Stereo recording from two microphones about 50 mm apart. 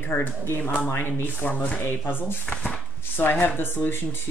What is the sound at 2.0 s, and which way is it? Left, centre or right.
Speech, left.